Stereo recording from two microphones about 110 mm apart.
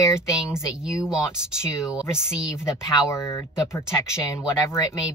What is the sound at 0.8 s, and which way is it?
Speech, 5° right (ahead or behind).